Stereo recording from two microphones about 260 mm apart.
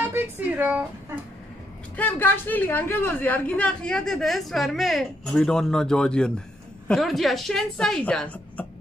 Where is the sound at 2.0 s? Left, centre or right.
Centre.